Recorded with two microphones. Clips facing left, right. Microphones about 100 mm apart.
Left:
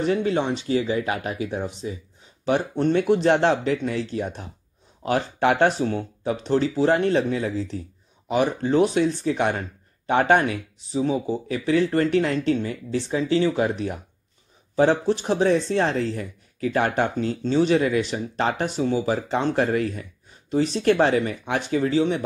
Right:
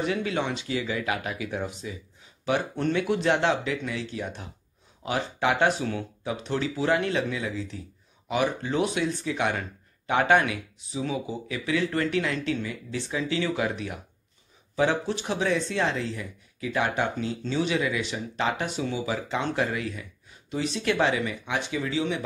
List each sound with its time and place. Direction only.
0.0 s speech: 35° left (ahead or behind)
2.9 s speech: 40° left (ahead or behind)